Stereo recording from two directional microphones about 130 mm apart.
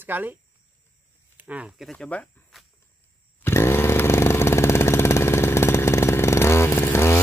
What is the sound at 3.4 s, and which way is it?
Chainsaw, 20° left (ahead or behind).